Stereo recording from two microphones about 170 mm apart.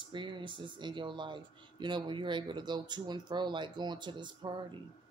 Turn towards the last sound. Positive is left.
turn(degrees=-25)  # may be behind; listen again after turning